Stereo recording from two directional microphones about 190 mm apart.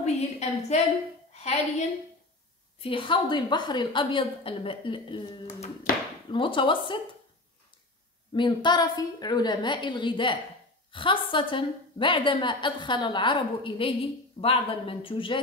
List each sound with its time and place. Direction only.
0.0 s a sound: 35° left (ahead or behind)
1.3 s a woman's voice: 35° left (ahead or behind)
8.3 s a woman's voice: 25° left (ahead or behind)